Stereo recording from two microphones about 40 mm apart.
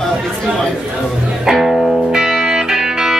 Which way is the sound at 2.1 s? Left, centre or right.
Centre.